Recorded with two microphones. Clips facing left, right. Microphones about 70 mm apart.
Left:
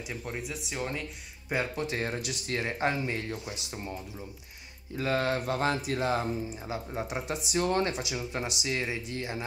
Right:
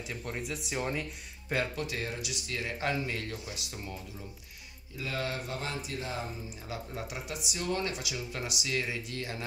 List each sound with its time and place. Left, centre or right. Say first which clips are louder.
0.0 s speech: left 1 dB; centre
1.5 s speech: left 1 dB; centre
1.9 s speech: left 4 dB; left
4.9 s speech: left 7 dB; left
6.5 s speech: left 4 dB; left
7.9 s speech: left 4 dB; left